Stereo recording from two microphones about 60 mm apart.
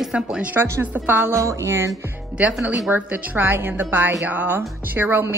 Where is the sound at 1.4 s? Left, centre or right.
Right.